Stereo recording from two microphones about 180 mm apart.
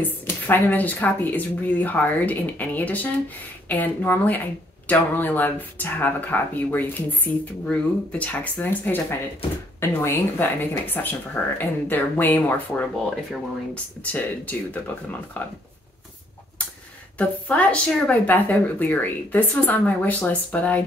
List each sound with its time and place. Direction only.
0.0 s speech: 10° left (ahead or behind)
17.2 s speech: 10° left (ahead or behind)